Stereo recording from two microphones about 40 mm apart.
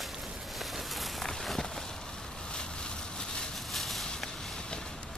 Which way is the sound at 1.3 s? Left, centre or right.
Centre.